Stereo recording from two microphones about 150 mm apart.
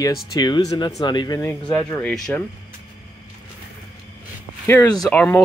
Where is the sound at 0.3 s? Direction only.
25° left (ahead or behind).